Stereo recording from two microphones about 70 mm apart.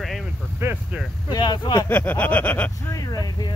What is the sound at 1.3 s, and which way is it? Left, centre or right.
Speech, left.